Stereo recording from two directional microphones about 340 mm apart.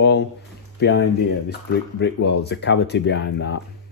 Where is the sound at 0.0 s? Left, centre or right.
Left.